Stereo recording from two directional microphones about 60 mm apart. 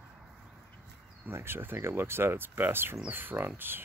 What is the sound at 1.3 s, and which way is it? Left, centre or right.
Speech, right.